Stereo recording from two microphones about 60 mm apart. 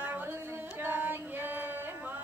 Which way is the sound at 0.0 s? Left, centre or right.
Right.